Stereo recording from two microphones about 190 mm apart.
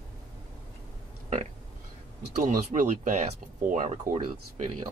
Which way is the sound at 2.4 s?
45° right (ahead or behind).